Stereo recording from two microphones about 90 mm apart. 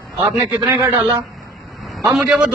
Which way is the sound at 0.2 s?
20° right (ahead or behind).